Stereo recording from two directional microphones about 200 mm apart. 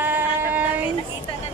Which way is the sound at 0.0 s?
10° right (ahead or behind).